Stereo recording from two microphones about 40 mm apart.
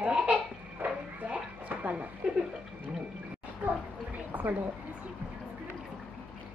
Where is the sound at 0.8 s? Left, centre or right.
Right.